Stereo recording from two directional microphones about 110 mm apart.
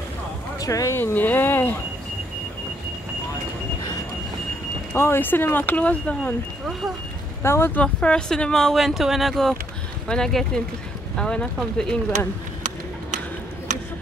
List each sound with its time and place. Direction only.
0.6 s speech: 30° left (ahead or behind)
0.9 s speech: 15° left (ahead or behind)
4.9 s speech: 20° left (ahead or behind)
7.4 s speech: 20° left (ahead or behind)
7.8 s speech: 10° left (ahead or behind)